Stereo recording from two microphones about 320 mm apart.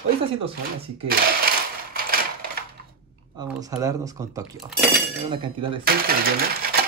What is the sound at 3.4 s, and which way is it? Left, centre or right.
Speech, centre.